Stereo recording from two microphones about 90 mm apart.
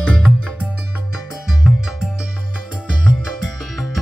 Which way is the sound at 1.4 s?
5° right (ahead or behind).